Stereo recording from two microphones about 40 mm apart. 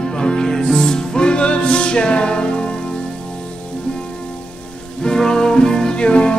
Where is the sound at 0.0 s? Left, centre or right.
Left.